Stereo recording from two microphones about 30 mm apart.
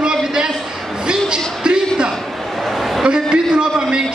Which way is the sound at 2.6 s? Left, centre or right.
Centre.